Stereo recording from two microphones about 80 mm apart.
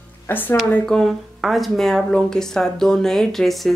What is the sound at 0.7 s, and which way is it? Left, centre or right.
Speech, centre.